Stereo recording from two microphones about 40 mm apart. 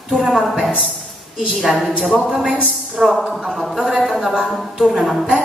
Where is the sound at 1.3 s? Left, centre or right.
Centre.